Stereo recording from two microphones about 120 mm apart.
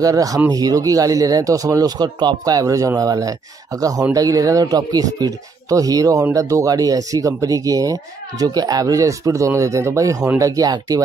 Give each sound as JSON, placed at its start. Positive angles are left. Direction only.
{"t": 0.0, "sound": "speech", "side_deg": -30}